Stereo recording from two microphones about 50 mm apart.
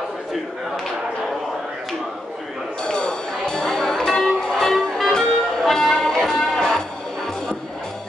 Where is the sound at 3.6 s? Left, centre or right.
Left.